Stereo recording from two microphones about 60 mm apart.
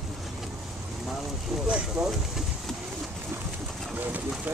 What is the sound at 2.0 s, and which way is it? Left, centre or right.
Speech, centre.